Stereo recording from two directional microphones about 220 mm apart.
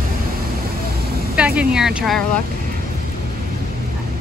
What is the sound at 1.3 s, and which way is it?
Speech, 5° right (ahead or behind).